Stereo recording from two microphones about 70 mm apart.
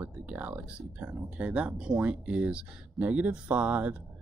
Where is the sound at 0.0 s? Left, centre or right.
Right.